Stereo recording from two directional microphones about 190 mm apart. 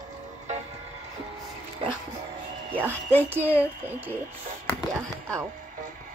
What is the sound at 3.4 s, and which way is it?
Speech, 10° left (ahead or behind).